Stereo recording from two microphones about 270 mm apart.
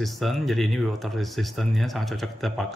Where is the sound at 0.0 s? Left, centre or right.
Centre.